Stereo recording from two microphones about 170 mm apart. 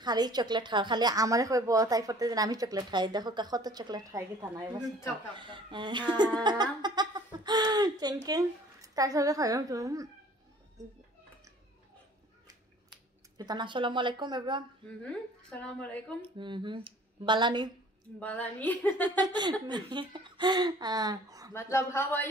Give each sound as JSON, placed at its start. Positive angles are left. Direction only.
{"t": 0.0, "sound": "speech", "side_deg": -25}
{"t": 13.4, "sound": "speech", "side_deg": -25}
{"t": 15.0, "sound": "speech", "side_deg": 5}
{"t": 16.2, "sound": "speech", "side_deg": -30}
{"t": 18.2, "sound": "speech", "side_deg": 10}
{"t": 19.0, "sound": "speech", "side_deg": -25}
{"t": 21.5, "sound": "speech", "side_deg": 15}